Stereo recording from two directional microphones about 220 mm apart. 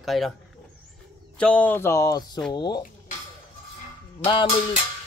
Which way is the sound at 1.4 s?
5° left (ahead or behind).